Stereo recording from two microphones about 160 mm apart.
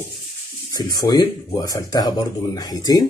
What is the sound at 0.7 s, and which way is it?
Speech, 25° left (ahead or behind).